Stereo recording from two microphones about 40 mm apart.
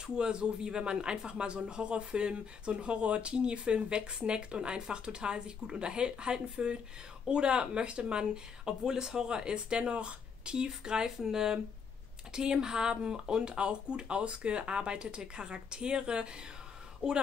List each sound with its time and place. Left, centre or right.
0.0 s speech: centre